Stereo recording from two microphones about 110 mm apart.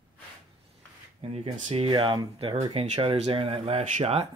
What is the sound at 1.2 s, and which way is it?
Speech, 70° right (ahead or behind).